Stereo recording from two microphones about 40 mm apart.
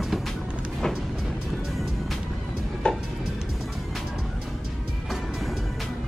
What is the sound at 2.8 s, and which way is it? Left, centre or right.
Music, left.